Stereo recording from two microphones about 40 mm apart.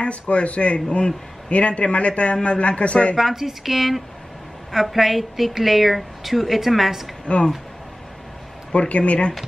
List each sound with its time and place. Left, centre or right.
0.0 s speech: left
3.2 s a woman's voice: centre
7.3 s speech: left
8.7 s speech: left